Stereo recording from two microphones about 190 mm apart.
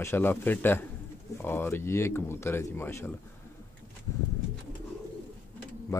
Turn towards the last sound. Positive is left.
turn(degrees=15)  # may be behind; listen again after turning